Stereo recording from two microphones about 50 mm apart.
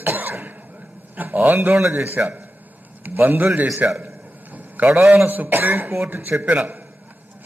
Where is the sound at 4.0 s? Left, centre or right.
Right.